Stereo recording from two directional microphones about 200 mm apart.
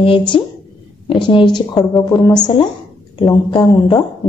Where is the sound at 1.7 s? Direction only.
10° left (ahead or behind).